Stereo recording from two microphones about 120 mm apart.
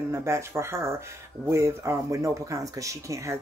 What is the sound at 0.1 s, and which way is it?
Speech, 25° right (ahead or behind).